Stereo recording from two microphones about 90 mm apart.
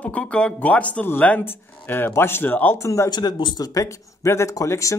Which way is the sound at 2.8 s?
35° left (ahead or behind).